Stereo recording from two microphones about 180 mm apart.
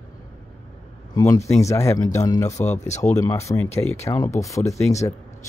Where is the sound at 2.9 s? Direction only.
40° left (ahead or behind).